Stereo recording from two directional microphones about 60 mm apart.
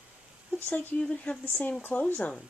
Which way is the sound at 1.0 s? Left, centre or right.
Centre.